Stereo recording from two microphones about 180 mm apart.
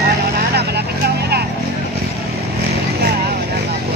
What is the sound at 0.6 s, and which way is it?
Vehicle, 65° right (ahead or behind).